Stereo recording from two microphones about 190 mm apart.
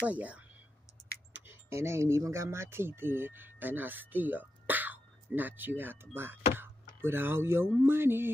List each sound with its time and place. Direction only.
0.0 s speech: 5° right (ahead or behind)